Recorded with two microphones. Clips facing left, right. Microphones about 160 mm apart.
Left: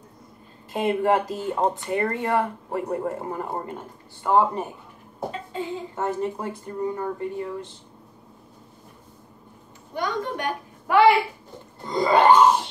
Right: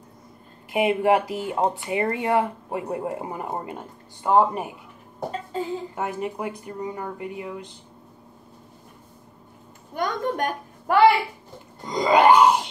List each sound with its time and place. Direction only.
0.7 s speech: 10° right (ahead or behind)
5.3 s speech: 40° right (ahead or behind)
5.9 s speech: 15° right (ahead or behind)
9.9 s a child's voice: 45° right (ahead or behind)
11.8 s speech: 15° right (ahead or behind)